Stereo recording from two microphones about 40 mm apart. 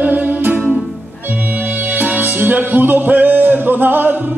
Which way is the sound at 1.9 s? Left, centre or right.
Right.